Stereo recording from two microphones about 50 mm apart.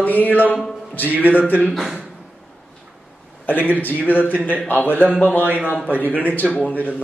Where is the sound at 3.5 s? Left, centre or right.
Left.